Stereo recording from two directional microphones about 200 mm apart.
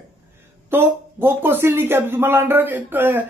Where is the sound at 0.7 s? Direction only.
10° right (ahead or behind).